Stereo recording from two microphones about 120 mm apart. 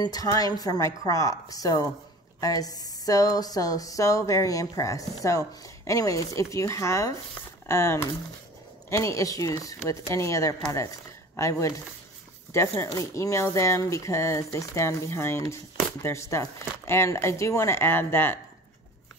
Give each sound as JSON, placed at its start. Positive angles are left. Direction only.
{"t": 0.0, "sound": "a woman's voice", "side_deg": 30}